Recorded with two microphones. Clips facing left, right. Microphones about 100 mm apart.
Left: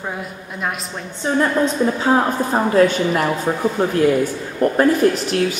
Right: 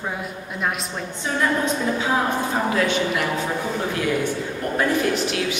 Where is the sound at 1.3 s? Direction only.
35° left (ahead or behind).